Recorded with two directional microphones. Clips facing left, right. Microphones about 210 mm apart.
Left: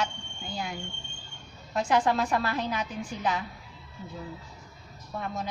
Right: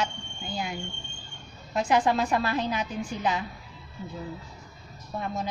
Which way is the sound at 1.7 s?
15° right (ahead or behind).